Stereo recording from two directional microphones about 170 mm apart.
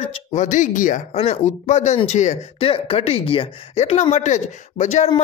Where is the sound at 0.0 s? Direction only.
45° left (ahead or behind).